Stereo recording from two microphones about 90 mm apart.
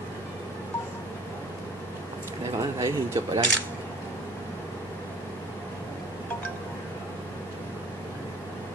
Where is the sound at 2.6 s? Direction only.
35° right (ahead or behind).